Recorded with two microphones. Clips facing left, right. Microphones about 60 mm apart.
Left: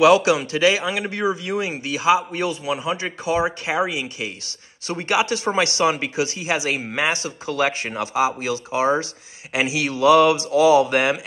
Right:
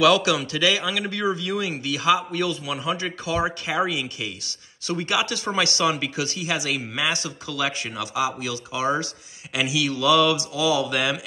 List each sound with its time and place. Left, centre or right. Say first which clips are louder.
0.0 s a man's voice: left 4 dB; left